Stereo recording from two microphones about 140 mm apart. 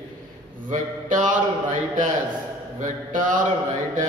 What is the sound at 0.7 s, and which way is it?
A man's voice, 65° right (ahead or behind).